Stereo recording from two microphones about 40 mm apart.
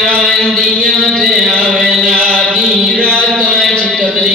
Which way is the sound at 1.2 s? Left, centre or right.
Centre.